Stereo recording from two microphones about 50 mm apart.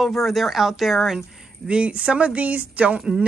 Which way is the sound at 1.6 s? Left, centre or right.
Right.